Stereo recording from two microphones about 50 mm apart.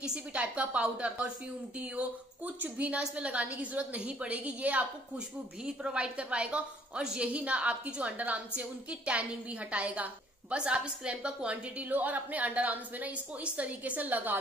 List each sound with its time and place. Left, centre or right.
0.0 s a woman's voice: right
5.9 s a woman's voice: centre
11.5 s a woman's voice: right